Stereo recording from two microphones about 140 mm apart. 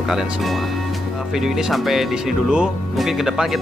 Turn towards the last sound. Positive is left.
turn(degrees=0)  # may be behind; listen again after turning